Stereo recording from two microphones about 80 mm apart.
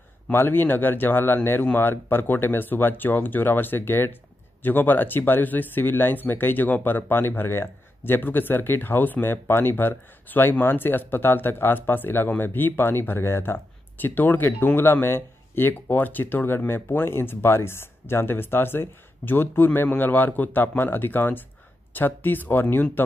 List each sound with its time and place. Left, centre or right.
0.3 s speech: left